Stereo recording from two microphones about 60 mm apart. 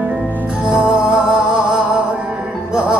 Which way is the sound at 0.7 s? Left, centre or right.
Centre.